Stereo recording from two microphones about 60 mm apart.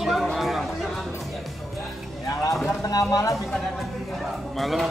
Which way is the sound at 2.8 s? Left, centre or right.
Left.